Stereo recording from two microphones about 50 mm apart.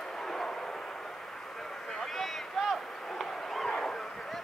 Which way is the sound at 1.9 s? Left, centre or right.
Centre.